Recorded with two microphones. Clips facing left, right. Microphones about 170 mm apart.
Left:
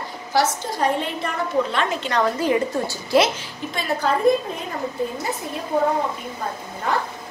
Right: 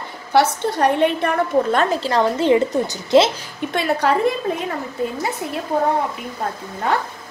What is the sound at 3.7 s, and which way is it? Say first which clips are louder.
Speech: right 5 dB; 65° right (ahead or behind).